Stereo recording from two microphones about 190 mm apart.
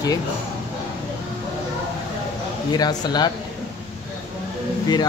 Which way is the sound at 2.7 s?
20° left (ahead or behind).